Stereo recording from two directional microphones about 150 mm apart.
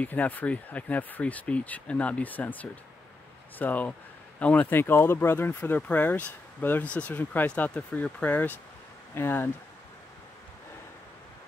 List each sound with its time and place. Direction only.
0.0 s speech: 10° left (ahead or behind)